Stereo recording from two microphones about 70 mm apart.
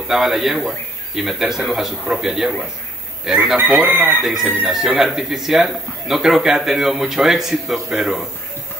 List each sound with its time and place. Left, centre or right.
0.1 s speech: centre
3.8 s speech: right
4.2 s speech: centre